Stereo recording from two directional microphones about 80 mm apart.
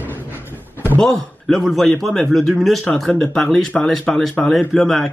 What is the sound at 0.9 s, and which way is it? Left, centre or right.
Speech, centre.